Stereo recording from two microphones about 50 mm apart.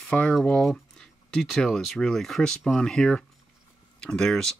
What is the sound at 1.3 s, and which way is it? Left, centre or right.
Speech, centre.